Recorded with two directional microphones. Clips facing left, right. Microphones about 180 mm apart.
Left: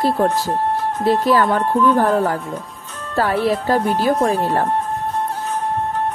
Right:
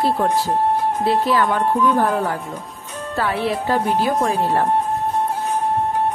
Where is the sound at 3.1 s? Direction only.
40° left (ahead or behind).